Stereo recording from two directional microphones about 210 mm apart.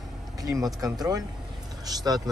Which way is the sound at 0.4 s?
15° right (ahead or behind).